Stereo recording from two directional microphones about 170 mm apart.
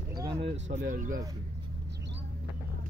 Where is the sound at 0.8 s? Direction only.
55° right (ahead or behind).